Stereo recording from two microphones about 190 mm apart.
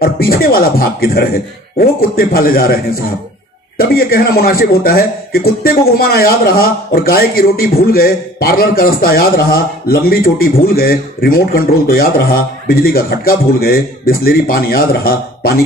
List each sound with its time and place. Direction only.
0.0 s a man's voice: 50° left (ahead or behind)